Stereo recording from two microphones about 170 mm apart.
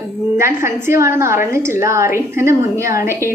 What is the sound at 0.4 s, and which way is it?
A woman's voice, 15° right (ahead or behind).